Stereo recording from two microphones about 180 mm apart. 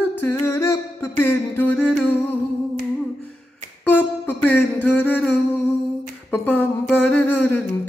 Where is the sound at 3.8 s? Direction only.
10° left (ahead or behind).